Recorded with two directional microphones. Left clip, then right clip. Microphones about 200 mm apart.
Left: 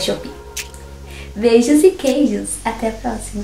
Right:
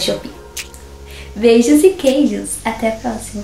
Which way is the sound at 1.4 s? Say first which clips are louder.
Right 2 dB; 5° left (ahead or behind).